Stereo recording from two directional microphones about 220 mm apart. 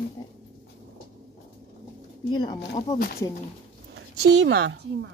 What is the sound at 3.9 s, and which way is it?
A woman's voice, 50° right (ahead or behind).